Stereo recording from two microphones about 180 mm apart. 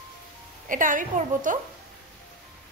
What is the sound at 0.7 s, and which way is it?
Speech, 45° right (ahead or behind).